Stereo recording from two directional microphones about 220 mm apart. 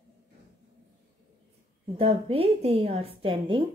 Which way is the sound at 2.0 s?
25° right (ahead or behind).